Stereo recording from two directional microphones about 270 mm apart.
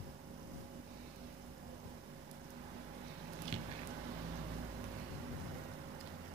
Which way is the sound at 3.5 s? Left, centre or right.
Right.